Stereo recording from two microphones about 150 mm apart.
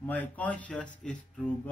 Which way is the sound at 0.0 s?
10° left (ahead or behind).